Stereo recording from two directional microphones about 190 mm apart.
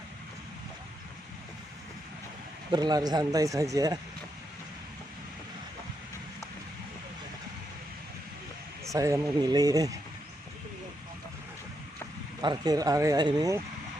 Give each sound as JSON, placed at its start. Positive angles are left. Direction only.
{"t": 2.7, "sound": "speech", "side_deg": -20}
{"t": 8.8, "sound": "speech", "side_deg": -15}
{"t": 12.4, "sound": "speech", "side_deg": -20}